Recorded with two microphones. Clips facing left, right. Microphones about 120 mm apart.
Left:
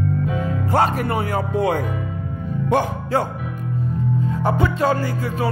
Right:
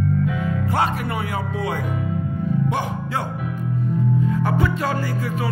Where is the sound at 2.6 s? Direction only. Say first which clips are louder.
Left 5 dB; 45° left (ahead or behind).